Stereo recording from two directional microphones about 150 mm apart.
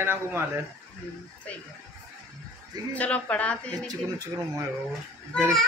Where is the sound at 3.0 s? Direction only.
10° left (ahead or behind).